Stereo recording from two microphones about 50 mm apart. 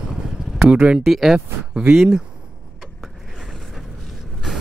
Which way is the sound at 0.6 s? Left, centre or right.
Right.